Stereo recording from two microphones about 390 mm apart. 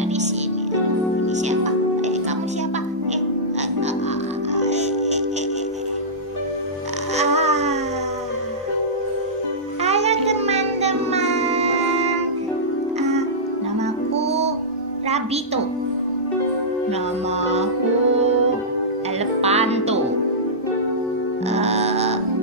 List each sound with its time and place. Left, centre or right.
1.2 s music: centre
4.6 s music: centre
7.2 s music: centre
9.8 s music: centre
14.1 s music: centre
17.4 s music: centre
19.4 s music: centre
21.5 s music: centre